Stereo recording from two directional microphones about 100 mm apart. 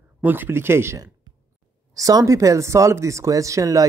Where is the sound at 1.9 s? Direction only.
35° right (ahead or behind).